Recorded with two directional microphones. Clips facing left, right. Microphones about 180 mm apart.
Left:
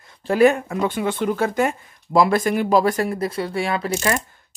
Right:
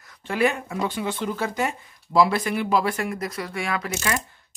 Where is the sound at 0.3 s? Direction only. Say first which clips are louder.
Left 7 dB; 45° left (ahead or behind).